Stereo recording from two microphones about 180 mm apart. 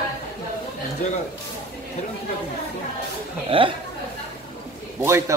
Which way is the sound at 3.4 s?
30° right (ahead or behind).